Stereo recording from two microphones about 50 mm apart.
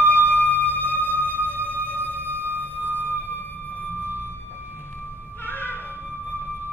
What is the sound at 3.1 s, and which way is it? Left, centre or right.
Music, left.